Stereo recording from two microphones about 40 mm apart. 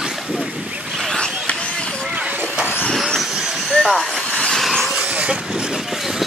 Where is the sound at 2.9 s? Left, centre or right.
Centre.